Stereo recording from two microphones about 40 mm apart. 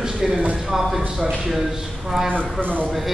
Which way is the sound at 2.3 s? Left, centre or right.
Left.